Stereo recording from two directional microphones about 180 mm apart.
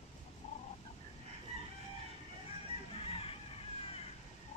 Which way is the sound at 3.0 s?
30° left (ahead or behind).